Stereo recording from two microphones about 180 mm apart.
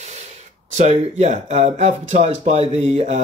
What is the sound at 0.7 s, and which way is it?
Speech, 40° right (ahead or behind).